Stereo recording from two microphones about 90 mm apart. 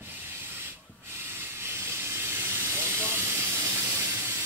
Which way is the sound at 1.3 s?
25° right (ahead or behind).